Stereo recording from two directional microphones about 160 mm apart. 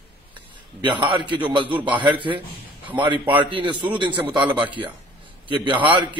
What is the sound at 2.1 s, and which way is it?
A man's voice, 30° right (ahead or behind).